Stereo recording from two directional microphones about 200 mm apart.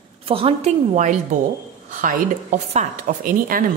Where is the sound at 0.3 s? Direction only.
30° right (ahead or behind).